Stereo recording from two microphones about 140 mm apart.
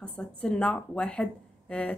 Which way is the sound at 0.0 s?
5° left (ahead or behind).